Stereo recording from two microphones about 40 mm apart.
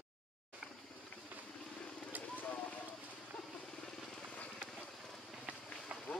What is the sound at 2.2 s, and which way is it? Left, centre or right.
Vehicle, left.